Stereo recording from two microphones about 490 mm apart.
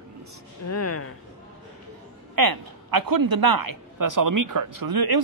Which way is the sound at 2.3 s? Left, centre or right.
Right.